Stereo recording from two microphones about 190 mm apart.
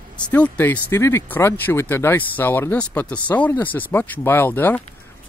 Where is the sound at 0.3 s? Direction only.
10° left (ahead or behind).